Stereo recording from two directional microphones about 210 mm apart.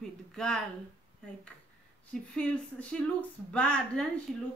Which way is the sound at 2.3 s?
5° left (ahead or behind).